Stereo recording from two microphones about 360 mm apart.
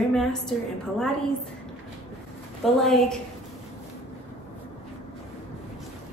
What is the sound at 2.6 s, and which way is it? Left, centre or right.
Speech, centre.